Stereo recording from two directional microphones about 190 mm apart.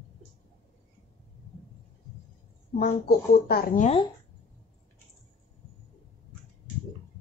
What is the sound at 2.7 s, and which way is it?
Speech, 50° left (ahead or behind).